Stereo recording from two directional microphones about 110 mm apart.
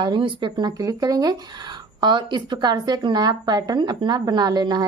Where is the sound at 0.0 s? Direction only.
50° right (ahead or behind).